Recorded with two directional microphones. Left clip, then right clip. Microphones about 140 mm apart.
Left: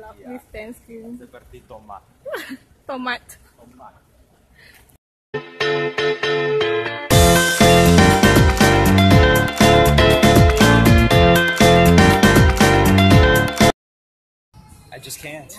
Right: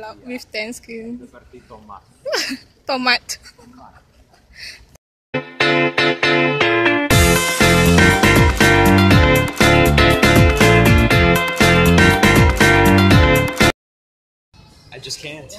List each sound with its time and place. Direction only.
0.0 s speech: 25° right (ahead or behind)
2.2 s speech: 20° right (ahead or behind)
5.3 s music: centre (ahead or behind)
14.9 s speech: 35° left (ahead or behind)